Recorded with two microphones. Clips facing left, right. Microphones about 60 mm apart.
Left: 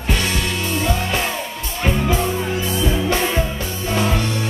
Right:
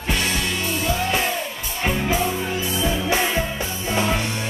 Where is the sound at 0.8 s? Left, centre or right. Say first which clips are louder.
Right 1 dB; centre.